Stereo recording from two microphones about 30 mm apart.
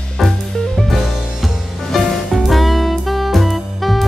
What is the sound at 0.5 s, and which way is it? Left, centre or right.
Music, centre.